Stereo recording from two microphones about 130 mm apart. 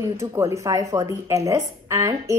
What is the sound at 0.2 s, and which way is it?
Speech, 25° right (ahead or behind).